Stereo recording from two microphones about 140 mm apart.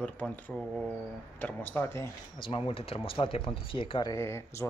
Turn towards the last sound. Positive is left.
turn(degrees=20)  # may be behind; listen again after turning